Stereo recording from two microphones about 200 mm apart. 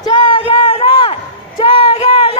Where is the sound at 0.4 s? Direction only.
30° left (ahead or behind).